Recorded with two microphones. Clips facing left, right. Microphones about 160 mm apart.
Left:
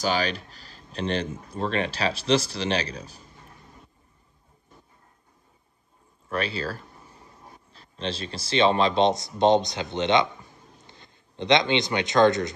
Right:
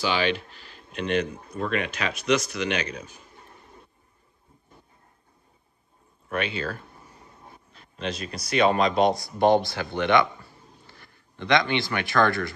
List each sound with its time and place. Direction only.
0.0 s speech: 40° left (ahead or behind)
6.2 s speech: 35° left (ahead or behind)
7.2 s a sound: centre (ahead or behind)
7.7 s speech: 35° left (ahead or behind)